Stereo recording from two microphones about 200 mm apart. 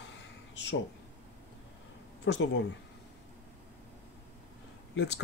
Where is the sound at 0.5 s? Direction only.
60° left (ahead or behind).